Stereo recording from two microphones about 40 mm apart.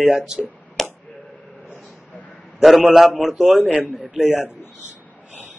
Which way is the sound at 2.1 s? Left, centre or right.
Left.